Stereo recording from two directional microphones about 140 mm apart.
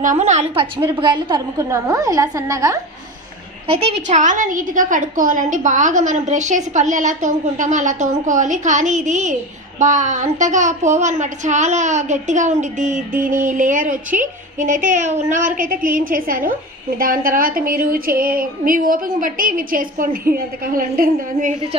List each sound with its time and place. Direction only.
0.0 s a woman's voice: 60° right (ahead or behind)
0.9 s a woman's voice: 35° right (ahead or behind)
3.6 s a woman's voice: 45° right (ahead or behind); by 21.5 s 80° right